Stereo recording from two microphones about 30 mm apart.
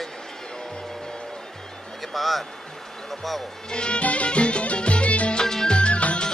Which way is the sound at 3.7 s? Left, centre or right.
Left.